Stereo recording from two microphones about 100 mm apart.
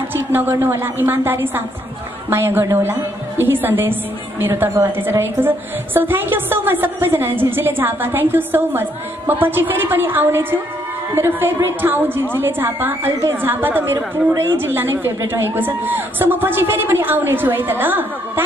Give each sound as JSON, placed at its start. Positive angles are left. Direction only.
{"t": 0.1, "sound": "a woman's voice", "side_deg": -20}